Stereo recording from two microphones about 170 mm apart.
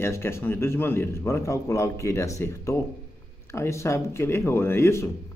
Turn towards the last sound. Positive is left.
turn(degrees=15)  # may be behind; listen again after turning